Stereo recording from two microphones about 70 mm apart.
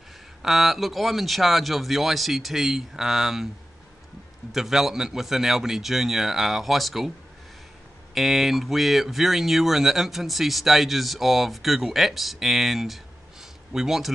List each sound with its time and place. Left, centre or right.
0.4 s speech: centre
4.5 s speech: centre
8.1 s speech: centre